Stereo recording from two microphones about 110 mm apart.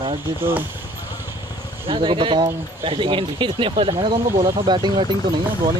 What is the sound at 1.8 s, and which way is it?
Speech, 50° right (ahead or behind).